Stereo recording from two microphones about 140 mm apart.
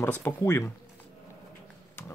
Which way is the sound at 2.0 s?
15° left (ahead or behind).